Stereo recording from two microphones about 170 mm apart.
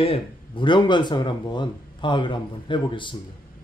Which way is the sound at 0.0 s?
30° left (ahead or behind).